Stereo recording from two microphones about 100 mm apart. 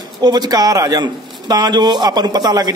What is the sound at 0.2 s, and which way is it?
A man's voice, 45° right (ahead or behind).